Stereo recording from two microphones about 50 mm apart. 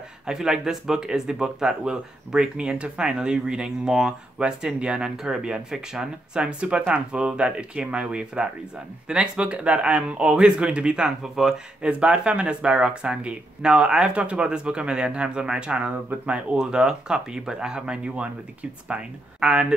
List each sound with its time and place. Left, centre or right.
0.3 s speech: centre
11.8 s speech: right